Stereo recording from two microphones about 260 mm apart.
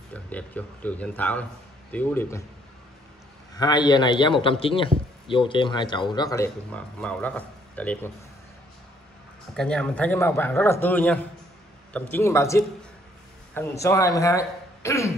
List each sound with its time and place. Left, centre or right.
0.1 s a man's voice: centre
3.5 s a man's voice: centre
9.5 s a man's voice: centre